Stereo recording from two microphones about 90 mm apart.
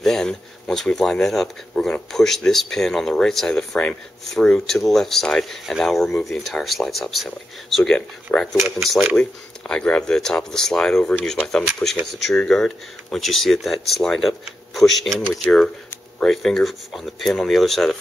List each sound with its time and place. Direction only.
0.0 s speech: 5° left (ahead or behind)
8.5 s speech: 5° right (ahead or behind)
9.1 s speech: 10° left (ahead or behind)